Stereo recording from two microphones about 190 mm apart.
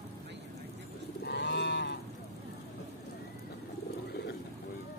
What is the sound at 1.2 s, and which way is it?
Cattle, 60° left (ahead or behind).